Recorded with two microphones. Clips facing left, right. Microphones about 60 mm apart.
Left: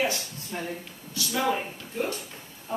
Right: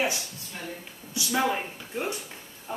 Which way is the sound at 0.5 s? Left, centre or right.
Left.